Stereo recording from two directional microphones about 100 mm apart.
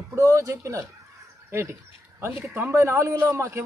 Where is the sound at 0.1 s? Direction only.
30° right (ahead or behind).